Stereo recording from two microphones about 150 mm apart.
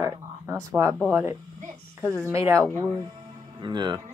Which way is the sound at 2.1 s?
20° right (ahead or behind).